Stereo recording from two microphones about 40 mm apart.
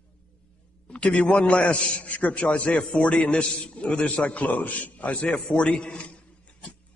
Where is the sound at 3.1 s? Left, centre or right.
Left.